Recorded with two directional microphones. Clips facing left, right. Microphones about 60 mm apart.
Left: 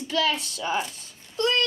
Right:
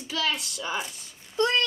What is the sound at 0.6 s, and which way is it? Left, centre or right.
Speech, left.